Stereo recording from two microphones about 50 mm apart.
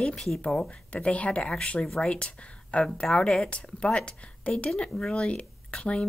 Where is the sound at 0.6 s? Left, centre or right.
Left.